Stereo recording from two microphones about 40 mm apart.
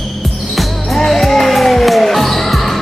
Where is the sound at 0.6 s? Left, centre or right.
Centre.